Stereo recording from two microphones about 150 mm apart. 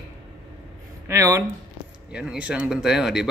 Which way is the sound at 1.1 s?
20° right (ahead or behind).